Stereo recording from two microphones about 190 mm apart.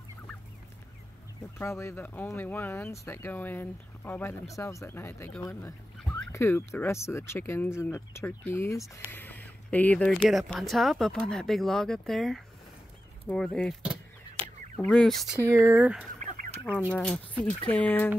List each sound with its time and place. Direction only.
1.6 s speech: 15° left (ahead or behind)
4.6 s turkey: 15° left (ahead or behind)
6.3 s speech: 15° left (ahead or behind)
15.5 s speech: 10° right (ahead or behind)
16.2 s fowl: 40° right (ahead or behind)
16.9 s speech: 10° left (ahead or behind)